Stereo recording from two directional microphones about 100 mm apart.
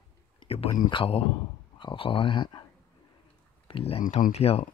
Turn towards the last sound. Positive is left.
turn(degrees=80)